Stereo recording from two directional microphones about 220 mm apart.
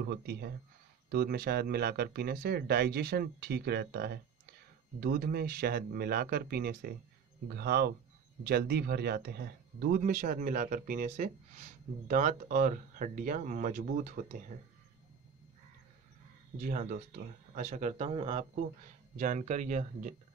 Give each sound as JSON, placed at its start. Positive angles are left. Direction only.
{"t": 0.1, "sound": "speech", "side_deg": -50}
{"t": 16.5, "sound": "speech", "side_deg": -35}